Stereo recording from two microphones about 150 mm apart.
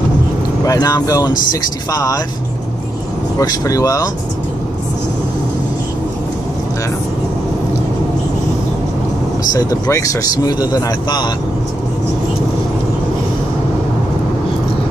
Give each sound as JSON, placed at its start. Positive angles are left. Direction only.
{"t": 0.7, "sound": "speech", "side_deg": 25}
{"t": 3.3, "sound": "speech", "side_deg": 20}
{"t": 9.5, "sound": "speech", "side_deg": 25}